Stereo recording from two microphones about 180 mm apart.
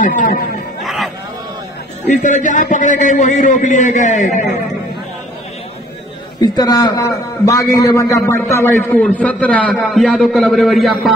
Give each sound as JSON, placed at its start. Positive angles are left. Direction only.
{"t": 0.0, "sound": "a man's voice", "side_deg": 50}
{"t": 0.8, "sound": "music", "side_deg": 0}
{"t": 2.2, "sound": "a man's voice", "side_deg": 45}
{"t": 6.4, "sound": "a man's voice", "side_deg": 20}